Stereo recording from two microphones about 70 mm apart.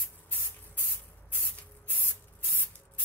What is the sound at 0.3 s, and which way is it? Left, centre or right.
Spray, left.